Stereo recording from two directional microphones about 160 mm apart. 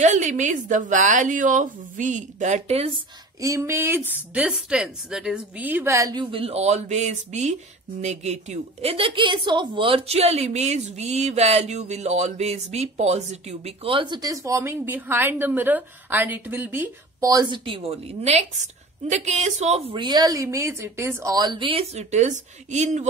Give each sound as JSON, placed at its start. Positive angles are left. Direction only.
{"t": 0.0, "sound": "a woman's voice", "side_deg": -50}
{"t": 3.3, "sound": "speech", "side_deg": -20}
{"t": 6.3, "sound": "a woman's voice", "side_deg": -40}
{"t": 19.9, "sound": "a woman's voice", "side_deg": -30}